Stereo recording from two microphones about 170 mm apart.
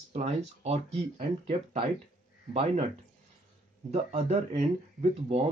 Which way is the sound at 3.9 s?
35° right (ahead or behind).